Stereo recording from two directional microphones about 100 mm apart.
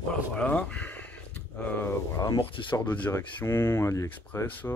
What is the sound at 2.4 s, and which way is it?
Speech, 55° left (ahead or behind).